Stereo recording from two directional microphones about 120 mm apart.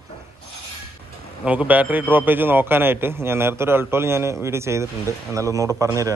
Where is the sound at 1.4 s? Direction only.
10° right (ahead or behind).